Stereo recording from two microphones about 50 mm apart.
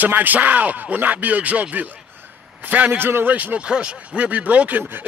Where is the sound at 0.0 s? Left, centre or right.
Right.